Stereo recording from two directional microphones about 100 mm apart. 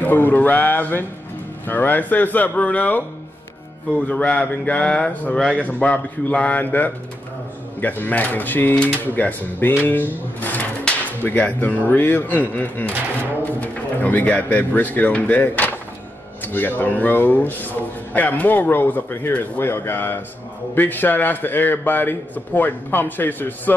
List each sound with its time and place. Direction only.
0.0 s a man's voice: 20° left (ahead or behind)
4.1 s a man's voice: 15° left (ahead or behind)
9.8 s drawer open or close: 20° left (ahead or behind)
11.9 s a man's voice: 20° left (ahead or behind)